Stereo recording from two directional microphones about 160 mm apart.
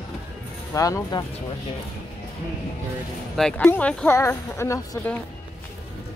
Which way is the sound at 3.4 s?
5° left (ahead or behind).